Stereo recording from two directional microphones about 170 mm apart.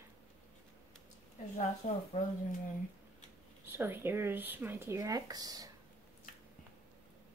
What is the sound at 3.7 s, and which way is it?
Speech, 10° right (ahead or behind).